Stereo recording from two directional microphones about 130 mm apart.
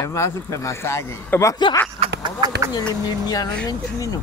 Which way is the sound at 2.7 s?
30° left (ahead or behind).